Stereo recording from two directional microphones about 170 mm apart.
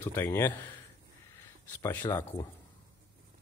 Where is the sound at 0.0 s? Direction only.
15° left (ahead or behind).